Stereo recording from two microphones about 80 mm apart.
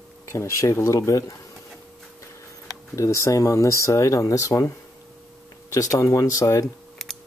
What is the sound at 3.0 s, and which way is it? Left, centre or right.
Speech, left.